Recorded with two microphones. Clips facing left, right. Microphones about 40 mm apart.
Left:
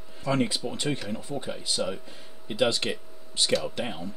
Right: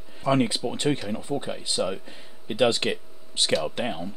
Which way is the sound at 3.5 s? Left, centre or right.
Right.